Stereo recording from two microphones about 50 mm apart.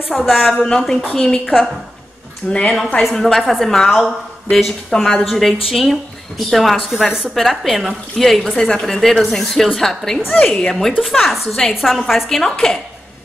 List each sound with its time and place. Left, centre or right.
0.1 s a woman's voice: centre
0.6 s a woman's voice: centre
1.4 s a woman's voice: centre
2.4 s a woman's voice: left
3.0 s a woman's voice: centre
7.3 s a woman's voice: centre
10.9 s a woman's voice: centre
11.1 s a woman's voice: centre